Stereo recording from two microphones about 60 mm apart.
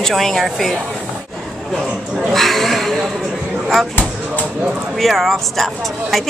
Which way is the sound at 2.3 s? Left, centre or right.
Centre.